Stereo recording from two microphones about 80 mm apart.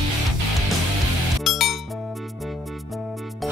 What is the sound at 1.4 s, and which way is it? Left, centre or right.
Music, centre.